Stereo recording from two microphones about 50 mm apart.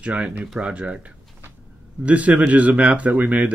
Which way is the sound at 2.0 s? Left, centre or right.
Right.